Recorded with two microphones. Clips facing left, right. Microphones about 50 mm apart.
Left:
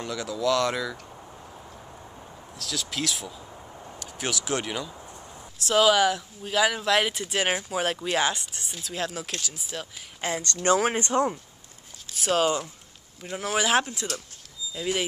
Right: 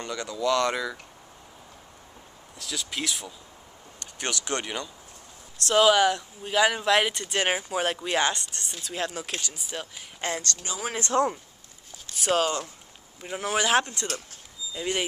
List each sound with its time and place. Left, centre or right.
0.0 s speech: centre
2.5 s speech: centre
10.6 s speech: left
11.0 s speech: centre
12.1 s speech: centre
13.2 s speech: centre